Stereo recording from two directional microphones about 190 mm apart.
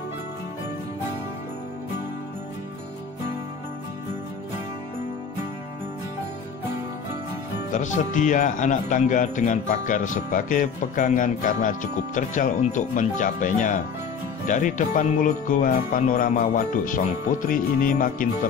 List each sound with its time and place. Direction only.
7.7 s speech: 40° left (ahead or behind)